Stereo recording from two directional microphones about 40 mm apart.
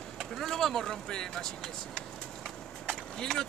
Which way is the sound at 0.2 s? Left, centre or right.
Centre.